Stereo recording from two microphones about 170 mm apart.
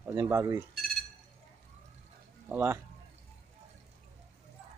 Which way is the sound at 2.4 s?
15° right (ahead or behind).